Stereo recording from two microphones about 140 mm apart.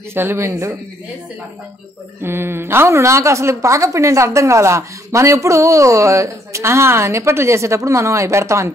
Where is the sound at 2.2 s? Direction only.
15° right (ahead or behind).